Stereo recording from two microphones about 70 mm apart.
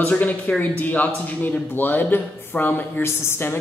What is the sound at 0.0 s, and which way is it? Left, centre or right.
A man's voice, left.